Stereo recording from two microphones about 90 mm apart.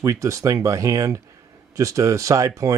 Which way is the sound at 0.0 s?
35° right (ahead or behind).